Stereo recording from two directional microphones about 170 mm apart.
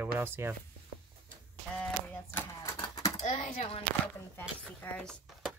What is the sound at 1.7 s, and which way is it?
Speech, 10° left (ahead or behind).